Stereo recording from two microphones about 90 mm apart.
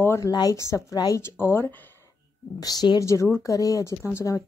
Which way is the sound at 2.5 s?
50° left (ahead or behind).